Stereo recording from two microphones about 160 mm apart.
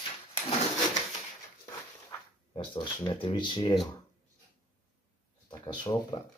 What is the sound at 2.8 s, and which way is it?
Speech, 20° left (ahead or behind).